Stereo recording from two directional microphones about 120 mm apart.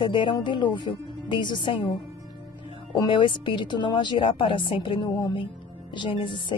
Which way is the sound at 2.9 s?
45° left (ahead or behind).